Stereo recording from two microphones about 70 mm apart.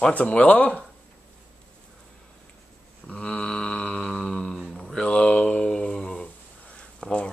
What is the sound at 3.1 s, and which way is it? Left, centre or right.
Mantra, centre.